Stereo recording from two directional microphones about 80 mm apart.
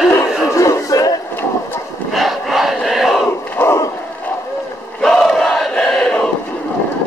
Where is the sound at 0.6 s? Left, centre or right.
Left.